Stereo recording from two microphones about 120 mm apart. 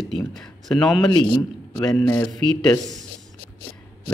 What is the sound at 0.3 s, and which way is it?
Speech, 5° left (ahead or behind).